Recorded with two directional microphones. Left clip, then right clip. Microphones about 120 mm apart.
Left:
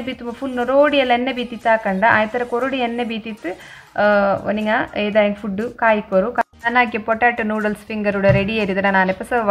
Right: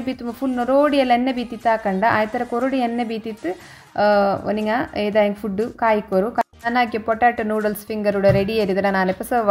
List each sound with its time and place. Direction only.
0.0 s a woman's voice: 30° right (ahead or behind)